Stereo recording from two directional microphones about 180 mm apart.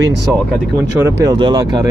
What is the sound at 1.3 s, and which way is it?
Speech, 25° right (ahead or behind).